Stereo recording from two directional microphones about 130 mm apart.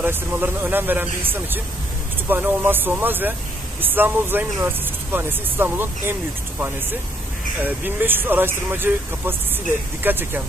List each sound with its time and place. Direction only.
0.0 s speech: 15° right (ahead or behind)
7.6 s speech: 15° right (ahead or behind)